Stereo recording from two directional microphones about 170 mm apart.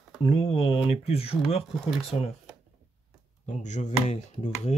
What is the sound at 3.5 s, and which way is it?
Speech, 45° left (ahead or behind).